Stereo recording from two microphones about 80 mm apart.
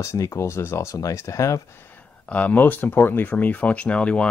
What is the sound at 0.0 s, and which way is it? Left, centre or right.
Speech, left.